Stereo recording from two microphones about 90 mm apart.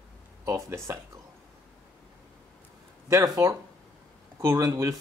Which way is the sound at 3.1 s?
40° right (ahead or behind).